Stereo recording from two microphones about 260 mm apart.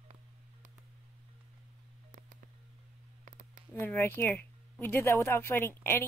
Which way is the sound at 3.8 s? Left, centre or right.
Centre.